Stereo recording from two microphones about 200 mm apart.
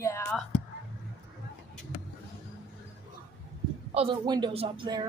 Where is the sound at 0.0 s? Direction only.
15° left (ahead or behind).